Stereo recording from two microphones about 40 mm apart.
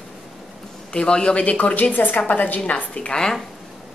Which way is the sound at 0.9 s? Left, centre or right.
Left.